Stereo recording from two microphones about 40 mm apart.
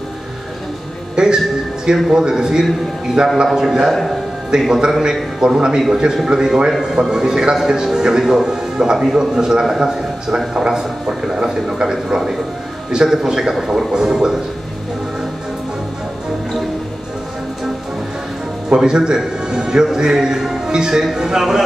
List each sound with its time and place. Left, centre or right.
1.1 s a man's voice: centre
18.7 s a man's voice: centre